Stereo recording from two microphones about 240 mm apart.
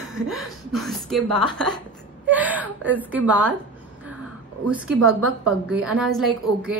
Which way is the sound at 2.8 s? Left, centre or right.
Centre.